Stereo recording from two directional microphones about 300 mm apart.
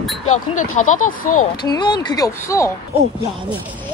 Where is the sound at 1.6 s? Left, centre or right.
Centre.